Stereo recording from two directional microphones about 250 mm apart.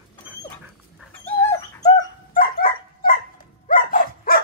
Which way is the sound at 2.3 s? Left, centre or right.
Left.